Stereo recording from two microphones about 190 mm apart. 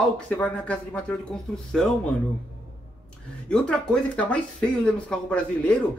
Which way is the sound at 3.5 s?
5° left (ahead or behind).